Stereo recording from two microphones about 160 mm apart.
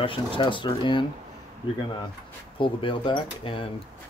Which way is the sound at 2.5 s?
30° left (ahead or behind).